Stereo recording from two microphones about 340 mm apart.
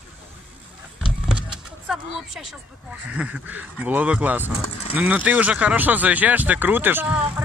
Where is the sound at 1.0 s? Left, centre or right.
Centre.